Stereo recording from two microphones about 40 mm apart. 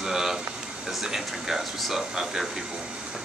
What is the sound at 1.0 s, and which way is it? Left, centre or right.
Speech, centre.